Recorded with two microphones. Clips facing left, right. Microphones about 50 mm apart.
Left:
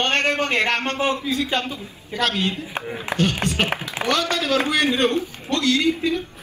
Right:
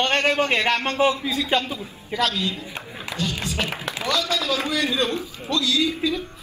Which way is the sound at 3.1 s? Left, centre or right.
Left.